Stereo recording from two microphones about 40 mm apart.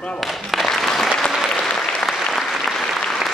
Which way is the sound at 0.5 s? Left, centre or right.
Centre.